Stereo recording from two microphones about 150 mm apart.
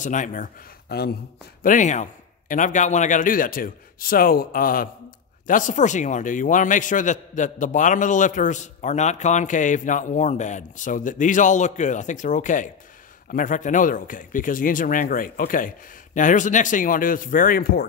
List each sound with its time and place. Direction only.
0.0 s a man's voice: 55° left (ahead or behind); by 1.1 s 90° left
1.6 s a man's voice: 60° left (ahead or behind)
5.5 s a man's voice: 60° left (ahead or behind); by 17.8 s 85° left